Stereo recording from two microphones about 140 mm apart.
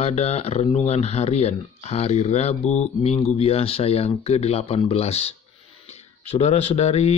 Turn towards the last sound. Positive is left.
turn(degrees=50)  # may be behind; listen again after turning